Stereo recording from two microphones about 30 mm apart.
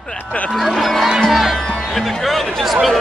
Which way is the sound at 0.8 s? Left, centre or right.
Centre.